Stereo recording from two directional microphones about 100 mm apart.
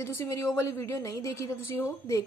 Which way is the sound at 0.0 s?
25° left (ahead or behind).